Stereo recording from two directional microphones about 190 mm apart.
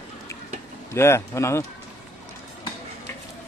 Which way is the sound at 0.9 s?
15° left (ahead or behind).